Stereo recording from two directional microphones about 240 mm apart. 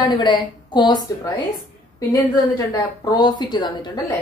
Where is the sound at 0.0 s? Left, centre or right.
Centre.